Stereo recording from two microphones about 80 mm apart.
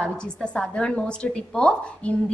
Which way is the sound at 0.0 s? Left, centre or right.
Centre.